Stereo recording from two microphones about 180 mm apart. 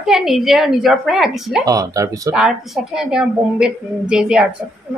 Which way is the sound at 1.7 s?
20° right (ahead or behind).